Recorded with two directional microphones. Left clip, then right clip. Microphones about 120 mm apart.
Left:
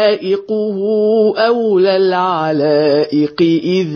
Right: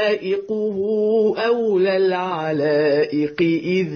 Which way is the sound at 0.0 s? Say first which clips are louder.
Left 7 dB; 35° left (ahead or behind).